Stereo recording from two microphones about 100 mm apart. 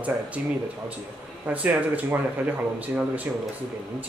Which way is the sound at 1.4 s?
15° right (ahead or behind).